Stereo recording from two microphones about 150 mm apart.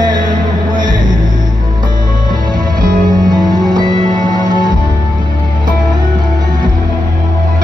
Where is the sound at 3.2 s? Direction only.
30° right (ahead or behind).